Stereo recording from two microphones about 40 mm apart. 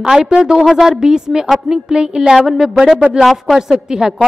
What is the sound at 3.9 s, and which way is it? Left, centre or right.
Speech, centre.